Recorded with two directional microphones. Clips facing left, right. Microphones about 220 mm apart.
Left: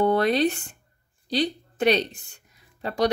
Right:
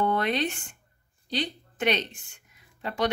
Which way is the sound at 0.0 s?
35° left (ahead or behind).